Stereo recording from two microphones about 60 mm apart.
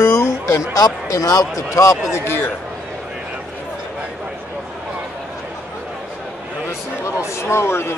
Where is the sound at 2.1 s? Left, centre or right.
Left.